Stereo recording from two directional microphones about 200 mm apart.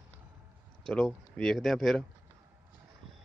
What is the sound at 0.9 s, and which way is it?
Speech, 5° left (ahead or behind).